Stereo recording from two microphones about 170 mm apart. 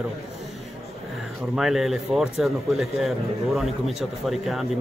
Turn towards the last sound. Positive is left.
turn(degrees=0)  # may be behind; listen again after turning